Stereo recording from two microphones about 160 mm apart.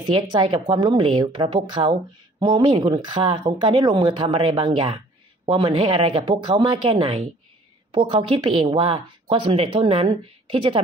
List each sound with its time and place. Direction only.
0.0 s speech: 30° right (ahead or behind)